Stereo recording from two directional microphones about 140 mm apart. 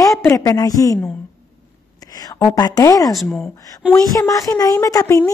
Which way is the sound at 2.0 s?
25° left (ahead or behind).